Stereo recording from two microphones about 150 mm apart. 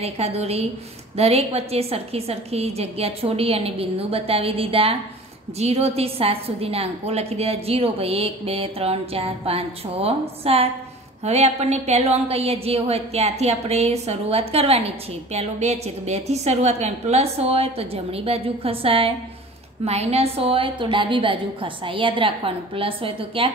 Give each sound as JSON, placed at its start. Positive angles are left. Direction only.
{"t": 0.0, "sound": "a woman's voice", "side_deg": -45}